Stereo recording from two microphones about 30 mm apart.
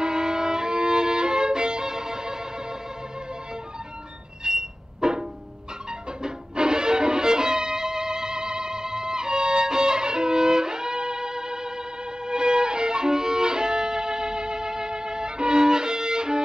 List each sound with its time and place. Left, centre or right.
0.0 s violin: right
4.5 s music: right
12.3 s violin: right